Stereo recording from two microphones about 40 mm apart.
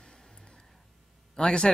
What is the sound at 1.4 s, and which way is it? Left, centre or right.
Speech, left.